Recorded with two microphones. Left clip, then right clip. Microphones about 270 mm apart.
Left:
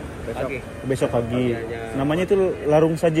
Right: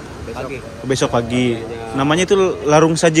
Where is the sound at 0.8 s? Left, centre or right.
Centre.